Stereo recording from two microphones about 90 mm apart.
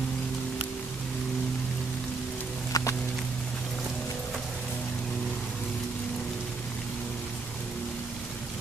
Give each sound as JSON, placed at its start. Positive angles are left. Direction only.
{"t": 2.7, "sound": "music", "side_deg": 35}